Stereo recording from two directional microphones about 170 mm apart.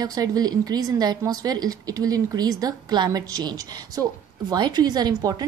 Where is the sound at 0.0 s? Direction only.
20° right (ahead or behind).